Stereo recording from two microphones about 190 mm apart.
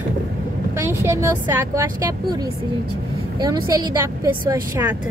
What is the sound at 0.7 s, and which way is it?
A woman's voice, 15° right (ahead or behind).